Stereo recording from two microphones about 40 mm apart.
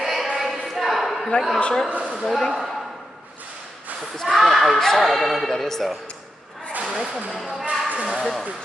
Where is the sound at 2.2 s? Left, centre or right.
Centre.